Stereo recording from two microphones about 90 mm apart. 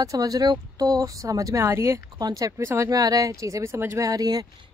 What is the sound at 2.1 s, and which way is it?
Speech, 45° right (ahead or behind).